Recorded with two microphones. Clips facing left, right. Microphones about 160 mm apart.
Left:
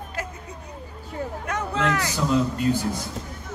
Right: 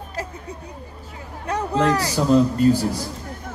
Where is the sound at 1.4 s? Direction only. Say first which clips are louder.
Right 6 dB; 35° right (ahead or behind).